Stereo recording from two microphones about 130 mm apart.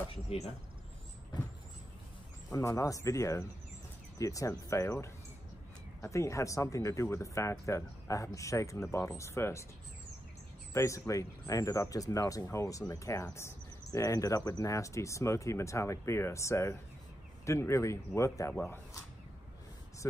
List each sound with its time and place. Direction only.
0.3 s speech: 50° left (ahead or behind)
2.5 s speech: 25° left (ahead or behind)
10.7 s speech: 25° left (ahead or behind)